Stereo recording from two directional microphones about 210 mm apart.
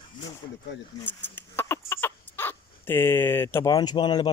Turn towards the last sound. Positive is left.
turn(degrees=20)  # may be behind; listen again after turning